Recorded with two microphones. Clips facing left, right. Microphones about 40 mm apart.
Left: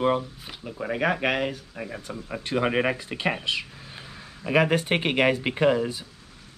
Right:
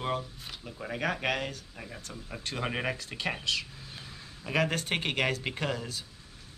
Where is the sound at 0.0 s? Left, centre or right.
Centre.